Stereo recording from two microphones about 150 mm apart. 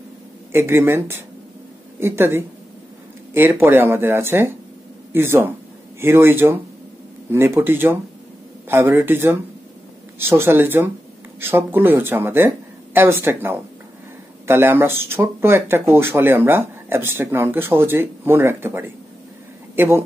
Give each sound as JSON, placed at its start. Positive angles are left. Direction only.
{"t": 0.5, "sound": "speech", "side_deg": -15}